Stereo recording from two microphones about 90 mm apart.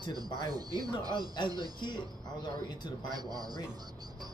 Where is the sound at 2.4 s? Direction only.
55° left (ahead or behind).